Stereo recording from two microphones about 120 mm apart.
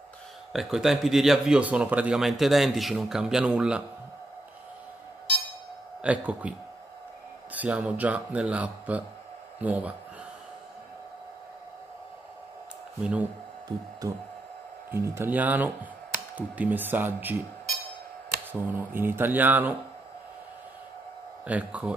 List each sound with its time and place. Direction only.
0.5 s speech: 5° right (ahead or behind)
6.0 s speech: 10° right (ahead or behind)
7.5 s speech: 10° right (ahead or behind)
13.0 s speech: 10° right (ahead or behind)
14.9 s speech: 20° right (ahead or behind)
18.5 s speech: 15° right (ahead or behind)
21.5 s speech: 10° right (ahead or behind)